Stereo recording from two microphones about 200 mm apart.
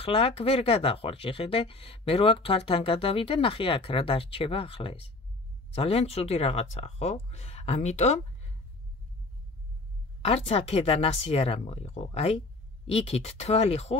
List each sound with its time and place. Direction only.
0.0 s speech: 30° left (ahead or behind)
10.2 s speech: 30° left (ahead or behind)